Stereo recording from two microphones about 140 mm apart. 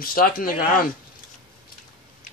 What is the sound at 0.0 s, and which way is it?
Speech, 90° left.